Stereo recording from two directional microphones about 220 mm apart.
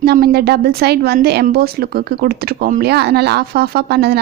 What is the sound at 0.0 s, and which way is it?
Speech, 45° right (ahead or behind).